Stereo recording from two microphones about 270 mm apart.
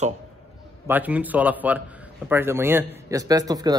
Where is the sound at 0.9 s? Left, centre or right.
Centre.